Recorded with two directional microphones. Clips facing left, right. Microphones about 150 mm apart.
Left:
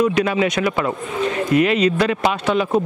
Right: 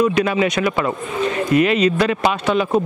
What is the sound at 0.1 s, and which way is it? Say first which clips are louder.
Speech: right 1 dB; 15° right (ahead or behind).